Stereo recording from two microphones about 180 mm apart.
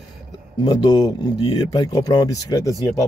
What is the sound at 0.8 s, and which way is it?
Speech, 20° left (ahead or behind).